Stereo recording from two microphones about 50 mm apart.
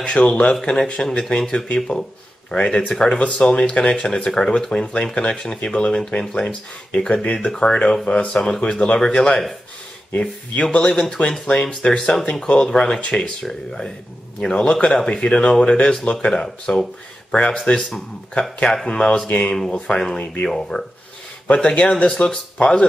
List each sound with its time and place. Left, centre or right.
0.0 s speech: left
2.5 s speech: left
2.9 s speech: centre
10.8 s speech: centre
19.5 s speech: centre
21.5 s speech: left